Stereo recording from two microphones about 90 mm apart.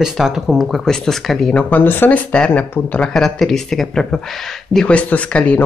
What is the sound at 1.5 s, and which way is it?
Speech, 15° left (ahead or behind).